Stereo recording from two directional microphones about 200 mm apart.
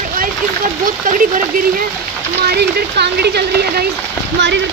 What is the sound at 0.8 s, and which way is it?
Speech, 40° right (ahead or behind).